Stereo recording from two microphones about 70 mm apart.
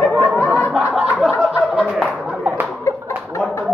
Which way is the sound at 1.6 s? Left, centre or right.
Centre.